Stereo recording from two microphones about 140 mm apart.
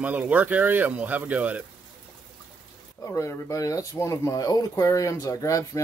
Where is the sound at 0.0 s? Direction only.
10° right (ahead or behind).